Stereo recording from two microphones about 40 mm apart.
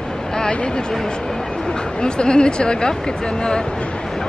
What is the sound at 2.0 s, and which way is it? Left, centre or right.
Speech, left.